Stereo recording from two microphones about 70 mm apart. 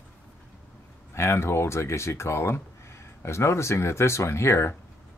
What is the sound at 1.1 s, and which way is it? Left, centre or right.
Speech, left.